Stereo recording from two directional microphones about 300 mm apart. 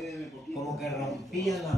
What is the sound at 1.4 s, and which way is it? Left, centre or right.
Speech, centre.